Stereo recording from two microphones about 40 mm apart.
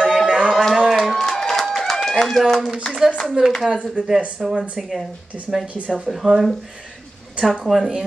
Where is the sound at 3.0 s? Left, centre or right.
Centre.